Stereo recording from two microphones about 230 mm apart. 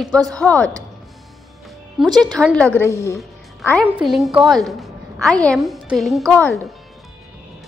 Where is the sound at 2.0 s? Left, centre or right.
Centre.